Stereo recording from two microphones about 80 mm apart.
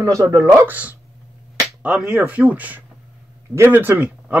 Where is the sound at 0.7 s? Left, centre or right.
Right.